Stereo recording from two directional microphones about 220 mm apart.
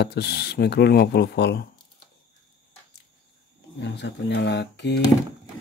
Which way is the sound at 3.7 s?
50° left (ahead or behind).